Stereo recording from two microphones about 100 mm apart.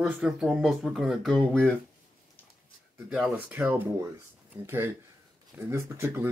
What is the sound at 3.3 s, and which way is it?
Speech, 20° right (ahead or behind).